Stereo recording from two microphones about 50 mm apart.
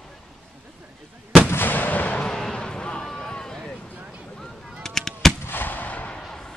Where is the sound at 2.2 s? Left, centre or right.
Centre.